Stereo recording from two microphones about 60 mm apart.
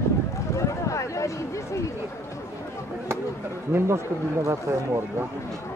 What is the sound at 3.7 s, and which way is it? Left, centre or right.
Speech, right.